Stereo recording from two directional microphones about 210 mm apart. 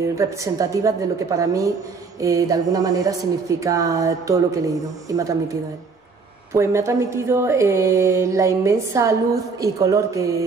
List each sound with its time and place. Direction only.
0.2 s speech: 15° right (ahead or behind)
6.5 s speech: 15° right (ahead or behind)